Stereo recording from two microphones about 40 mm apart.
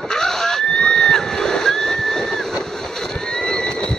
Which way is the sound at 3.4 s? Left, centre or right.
Centre.